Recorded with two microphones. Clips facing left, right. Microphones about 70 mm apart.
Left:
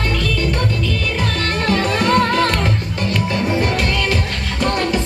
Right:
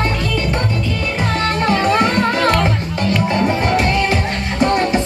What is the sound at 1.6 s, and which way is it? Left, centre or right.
Music, right.